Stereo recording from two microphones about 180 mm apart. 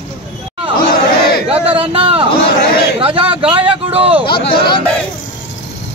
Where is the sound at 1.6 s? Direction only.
30° right (ahead or behind).